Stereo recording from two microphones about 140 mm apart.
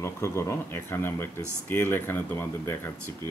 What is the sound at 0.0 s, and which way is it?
Speech, 20° left (ahead or behind).